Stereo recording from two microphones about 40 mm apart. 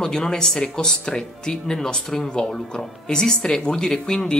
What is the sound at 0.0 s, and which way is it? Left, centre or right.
Speech, centre.